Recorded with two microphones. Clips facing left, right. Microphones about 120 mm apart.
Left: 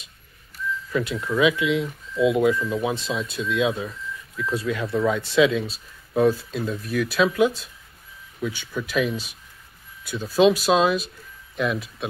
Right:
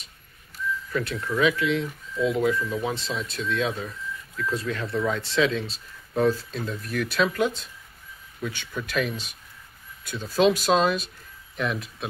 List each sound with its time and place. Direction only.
0.9 s speech: 10° left (ahead or behind)